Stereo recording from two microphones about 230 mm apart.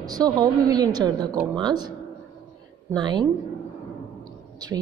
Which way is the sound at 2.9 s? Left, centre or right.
Centre.